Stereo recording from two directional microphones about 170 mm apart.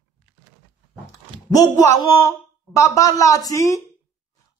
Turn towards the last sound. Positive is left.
turn(degrees=20)  # may be behind; listen again after turning